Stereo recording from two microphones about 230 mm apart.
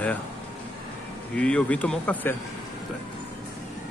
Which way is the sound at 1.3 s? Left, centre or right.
Centre.